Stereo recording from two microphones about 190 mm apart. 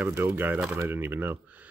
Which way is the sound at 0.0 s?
15° right (ahead or behind).